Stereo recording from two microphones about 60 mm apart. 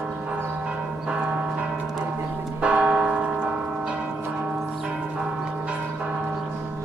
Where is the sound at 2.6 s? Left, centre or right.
Right.